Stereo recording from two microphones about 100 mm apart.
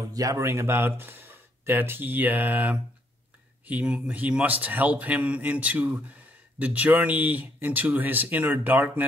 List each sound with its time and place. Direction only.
0.1 s a man's voice: 35° right (ahead or behind); by 9.0 s 20° right (ahead or behind)